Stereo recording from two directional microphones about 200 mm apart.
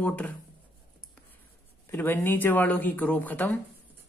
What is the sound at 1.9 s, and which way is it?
Speech, 10° left (ahead or behind).